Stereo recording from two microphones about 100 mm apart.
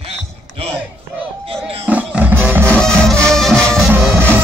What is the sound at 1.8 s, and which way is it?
Music, 15° right (ahead or behind).